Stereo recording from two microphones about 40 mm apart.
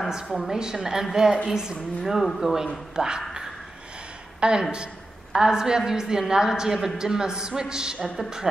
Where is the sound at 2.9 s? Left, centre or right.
Centre.